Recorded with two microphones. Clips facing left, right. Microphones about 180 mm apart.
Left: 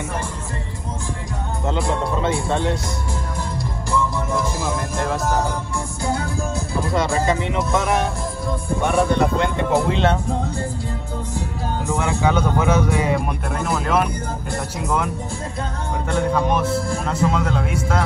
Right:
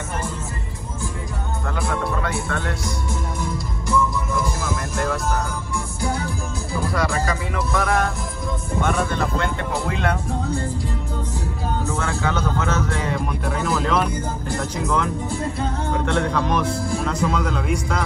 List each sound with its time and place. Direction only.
1.7 s speech: 25° left (ahead or behind)
6.9 s speech: 20° left (ahead or behind)
11.9 s speech: 15° left (ahead or behind)
16.1 s a man's voice: 5° left (ahead or behind)